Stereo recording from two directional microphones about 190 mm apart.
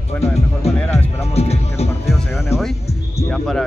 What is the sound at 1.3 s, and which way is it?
Music, 35° left (ahead or behind).